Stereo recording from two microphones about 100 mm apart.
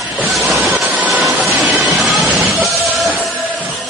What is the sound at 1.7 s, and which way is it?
Music, 5° right (ahead or behind).